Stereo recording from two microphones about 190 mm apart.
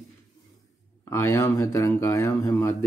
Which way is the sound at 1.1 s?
15° left (ahead or behind).